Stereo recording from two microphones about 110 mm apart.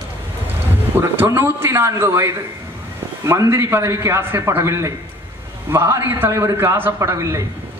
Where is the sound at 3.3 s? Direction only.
25° right (ahead or behind).